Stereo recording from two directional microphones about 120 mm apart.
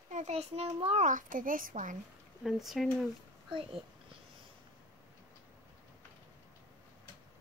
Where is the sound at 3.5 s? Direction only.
45° right (ahead or behind).